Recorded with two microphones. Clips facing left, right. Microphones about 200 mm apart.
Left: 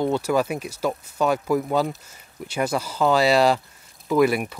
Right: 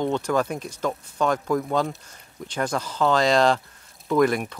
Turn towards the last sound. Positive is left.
turn(degrees=10)  # may be behind; listen again after turning